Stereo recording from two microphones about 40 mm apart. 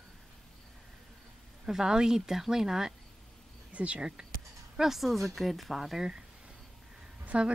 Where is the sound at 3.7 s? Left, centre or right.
Right.